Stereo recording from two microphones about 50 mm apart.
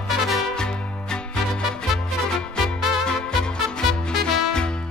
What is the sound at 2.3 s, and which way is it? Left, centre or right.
Music, centre.